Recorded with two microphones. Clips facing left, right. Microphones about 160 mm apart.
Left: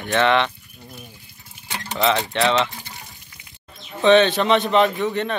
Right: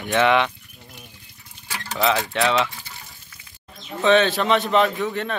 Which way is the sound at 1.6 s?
20° left (ahead or behind).